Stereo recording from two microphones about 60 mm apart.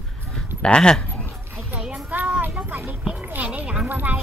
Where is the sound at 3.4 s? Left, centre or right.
Right.